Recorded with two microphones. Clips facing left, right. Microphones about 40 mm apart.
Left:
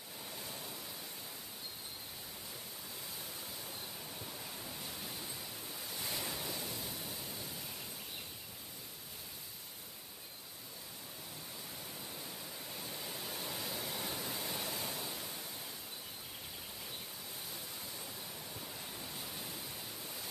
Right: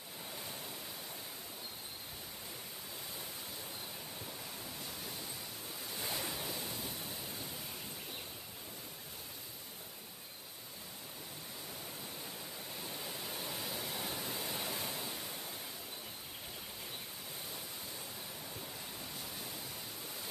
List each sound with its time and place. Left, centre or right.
0.3 s waves: centre
4.2 s waves: centre
12.2 s pink noise: centre
18.6 s waves: centre